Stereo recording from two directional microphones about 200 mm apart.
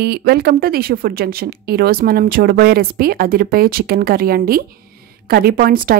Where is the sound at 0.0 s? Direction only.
55° right (ahead or behind).